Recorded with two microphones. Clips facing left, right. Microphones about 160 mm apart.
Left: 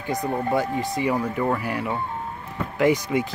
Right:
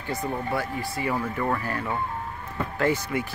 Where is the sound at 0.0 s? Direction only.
15° left (ahead or behind).